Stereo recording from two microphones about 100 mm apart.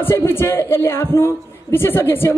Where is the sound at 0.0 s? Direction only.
25° left (ahead or behind).